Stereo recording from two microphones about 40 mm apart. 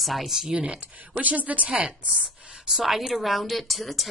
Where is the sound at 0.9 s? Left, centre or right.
Right.